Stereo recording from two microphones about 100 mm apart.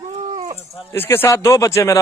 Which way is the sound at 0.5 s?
25° left (ahead or behind).